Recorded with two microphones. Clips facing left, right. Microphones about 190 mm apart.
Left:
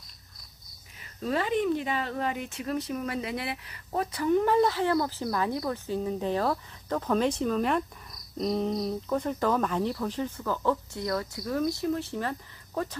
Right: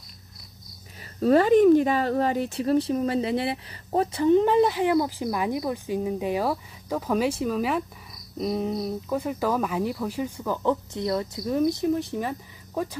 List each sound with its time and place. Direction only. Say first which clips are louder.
1.2 s speech: right 10 dB; 45° right (ahead or behind); by 12.9 s 15° right (ahead or behind)